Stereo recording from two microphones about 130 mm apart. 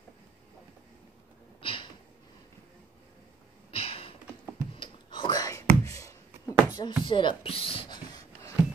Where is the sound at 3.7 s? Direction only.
45° left (ahead or behind).